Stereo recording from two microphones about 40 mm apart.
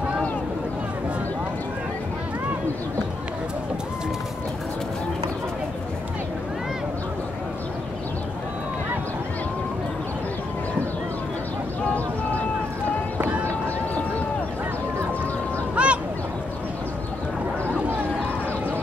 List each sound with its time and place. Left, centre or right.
15.7 s duck: right